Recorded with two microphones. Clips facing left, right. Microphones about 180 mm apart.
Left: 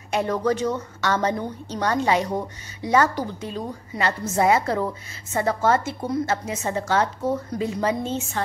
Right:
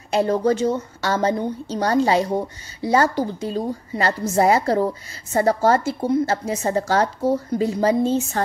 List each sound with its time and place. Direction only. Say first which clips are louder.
0.1 s a woman's voice: right 4 dB; 30° right (ahead or behind)